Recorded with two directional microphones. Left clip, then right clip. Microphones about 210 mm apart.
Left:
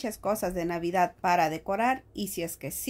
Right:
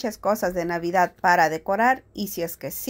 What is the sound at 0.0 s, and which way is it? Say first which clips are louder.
Speech: right 6 dB; 15° right (ahead or behind).